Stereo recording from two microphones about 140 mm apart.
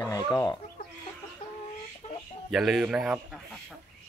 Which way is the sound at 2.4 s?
Centre (ahead or behind).